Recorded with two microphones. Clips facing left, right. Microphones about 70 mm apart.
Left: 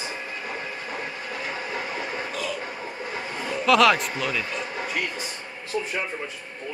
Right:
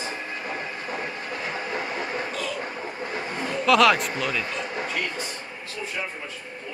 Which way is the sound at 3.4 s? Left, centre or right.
Centre.